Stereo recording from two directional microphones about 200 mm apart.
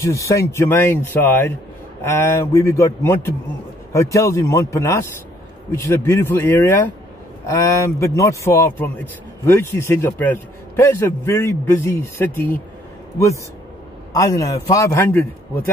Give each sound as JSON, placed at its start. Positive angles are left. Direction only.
{"t": 0.0, "sound": "a man's voice", "side_deg": 15}
{"t": 14.1, "sound": "a man's voice", "side_deg": 15}